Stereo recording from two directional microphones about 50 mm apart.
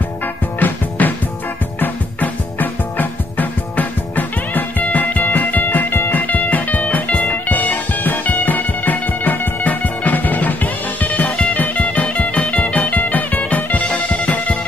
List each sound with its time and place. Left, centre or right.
0.6 s music: left
6.2 s music: left